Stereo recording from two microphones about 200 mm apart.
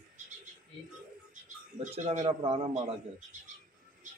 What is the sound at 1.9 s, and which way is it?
Speech, 35° right (ahead or behind).